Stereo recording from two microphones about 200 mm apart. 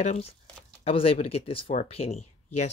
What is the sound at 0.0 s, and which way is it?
Speech, 35° left (ahead or behind).